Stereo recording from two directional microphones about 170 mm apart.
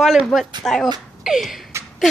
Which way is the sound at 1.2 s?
Centre (ahead or behind).